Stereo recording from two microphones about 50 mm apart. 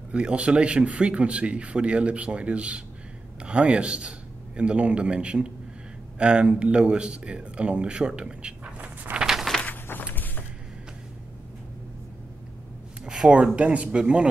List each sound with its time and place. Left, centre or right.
0.1 s speech: right
9.2 s a sound: centre
9.8 s walk: left
13.0 s speech: centre